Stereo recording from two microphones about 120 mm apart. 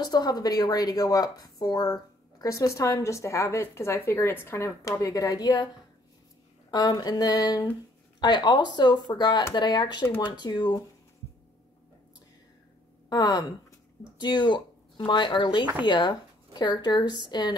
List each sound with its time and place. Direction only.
0.0 s a woman's voice: 35° left (ahead or behind)
6.7 s speech: 35° left (ahead or behind)
13.1 s speech: 35° left (ahead or behind)